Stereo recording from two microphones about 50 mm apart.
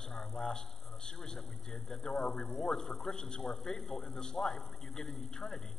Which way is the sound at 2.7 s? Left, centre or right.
Centre.